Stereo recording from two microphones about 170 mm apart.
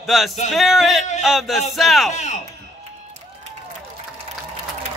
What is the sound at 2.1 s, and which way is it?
Speech, 45° left (ahead or behind).